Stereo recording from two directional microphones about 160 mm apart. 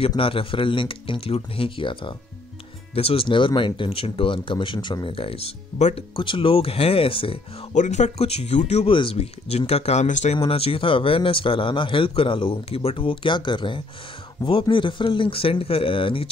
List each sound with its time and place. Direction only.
0.0 s speech: 35° left (ahead or behind)
7.7 s speech: 50° left (ahead or behind); by 16.3 s 35° left (ahead or behind)